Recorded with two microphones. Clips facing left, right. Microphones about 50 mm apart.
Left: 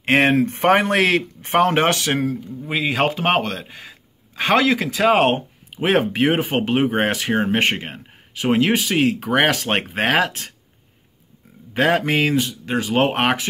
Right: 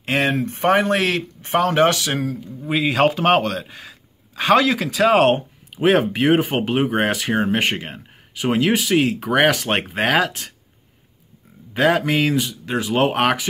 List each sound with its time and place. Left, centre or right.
0.0 s speech: left
2.6 s speech: centre
11.7 s speech: centre
12.4 s speech: centre
12.9 s speech: centre